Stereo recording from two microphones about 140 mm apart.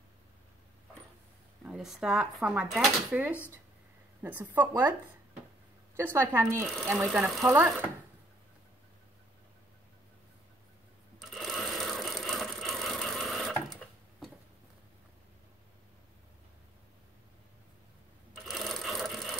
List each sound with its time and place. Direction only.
1.6 s speech: 5° right (ahead or behind)
4.2 s a woman's voice: 10° right (ahead or behind)
5.9 s a woman's voice: 15° right (ahead or behind)
6.7 s speech: centre (ahead or behind)
7.4 s a woman's voice: 15° right (ahead or behind)
11.1 s sewing machine: centre (ahead or behind)
18.3 s sewing machine: centre (ahead or behind)